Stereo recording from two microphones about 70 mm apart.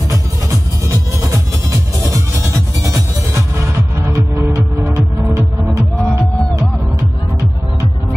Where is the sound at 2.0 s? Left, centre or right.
Right.